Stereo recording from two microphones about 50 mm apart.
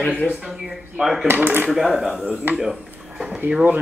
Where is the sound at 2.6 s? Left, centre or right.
Centre.